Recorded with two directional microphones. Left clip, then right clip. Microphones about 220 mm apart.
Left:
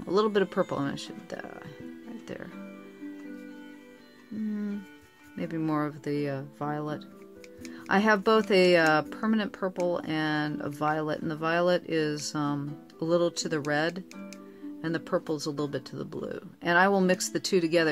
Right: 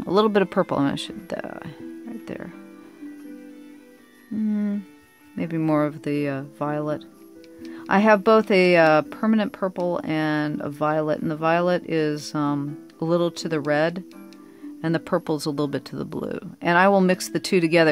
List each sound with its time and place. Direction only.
0.0 s speech: 40° right (ahead or behind)
2.2 s music: 35° right (ahead or behind)
5.4 s speech: 35° right (ahead or behind)